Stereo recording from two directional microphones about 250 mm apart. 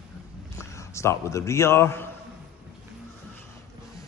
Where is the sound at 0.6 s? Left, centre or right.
Centre.